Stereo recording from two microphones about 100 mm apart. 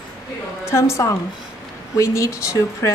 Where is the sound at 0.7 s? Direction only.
30° left (ahead or behind).